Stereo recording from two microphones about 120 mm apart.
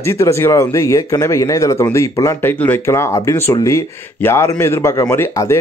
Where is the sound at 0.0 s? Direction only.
25° left (ahead or behind).